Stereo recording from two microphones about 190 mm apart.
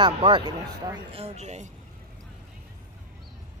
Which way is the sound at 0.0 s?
25° right (ahead or behind).